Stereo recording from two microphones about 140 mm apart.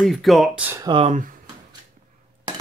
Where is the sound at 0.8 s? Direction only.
40° right (ahead or behind).